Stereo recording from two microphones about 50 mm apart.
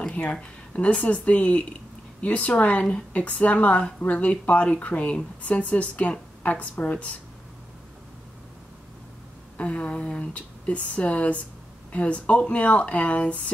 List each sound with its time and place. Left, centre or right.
0.1 s a woman's voice: left
9.6 s a woman's voice: left